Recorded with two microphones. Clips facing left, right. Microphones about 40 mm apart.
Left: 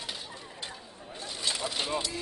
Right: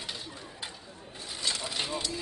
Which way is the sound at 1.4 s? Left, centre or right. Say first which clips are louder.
Left 1 dB; centre.